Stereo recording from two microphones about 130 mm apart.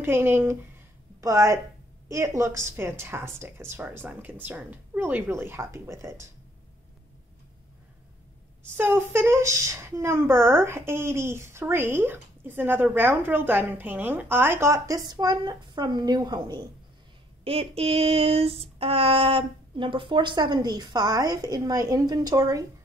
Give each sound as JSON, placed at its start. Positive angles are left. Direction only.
{"t": 0.0, "sound": "speech", "side_deg": -20}
{"t": 8.7, "sound": "speech", "side_deg": -15}
{"t": 17.5, "sound": "female singing", "side_deg": -50}